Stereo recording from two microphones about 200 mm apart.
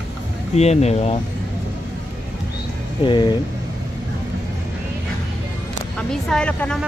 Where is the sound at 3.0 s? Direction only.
25° left (ahead or behind).